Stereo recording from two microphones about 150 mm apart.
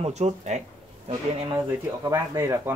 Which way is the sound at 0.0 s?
50° right (ahead or behind).